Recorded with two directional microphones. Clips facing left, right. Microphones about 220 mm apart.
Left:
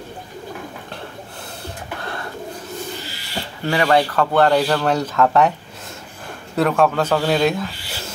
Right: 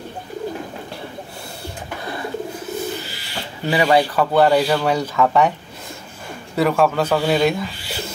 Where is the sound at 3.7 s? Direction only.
10° right (ahead or behind).